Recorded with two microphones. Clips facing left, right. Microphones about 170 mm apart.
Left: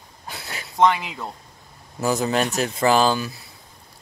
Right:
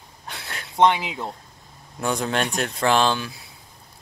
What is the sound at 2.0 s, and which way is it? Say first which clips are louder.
Speech: left 3 dB; 5° left (ahead or behind).